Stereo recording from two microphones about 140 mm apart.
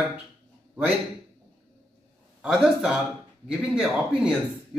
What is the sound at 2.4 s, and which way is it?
A man's voice, 5° right (ahead or behind).